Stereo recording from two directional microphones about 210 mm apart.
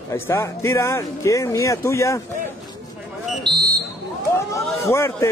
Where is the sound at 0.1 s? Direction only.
15° left (ahead or behind).